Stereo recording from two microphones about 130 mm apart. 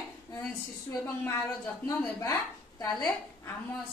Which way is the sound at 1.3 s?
25° left (ahead or behind).